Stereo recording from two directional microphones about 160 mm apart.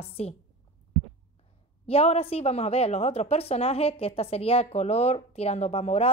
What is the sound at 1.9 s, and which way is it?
A woman's voice, 40° left (ahead or behind).